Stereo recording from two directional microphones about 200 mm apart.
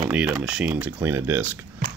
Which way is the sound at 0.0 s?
5° right (ahead or behind).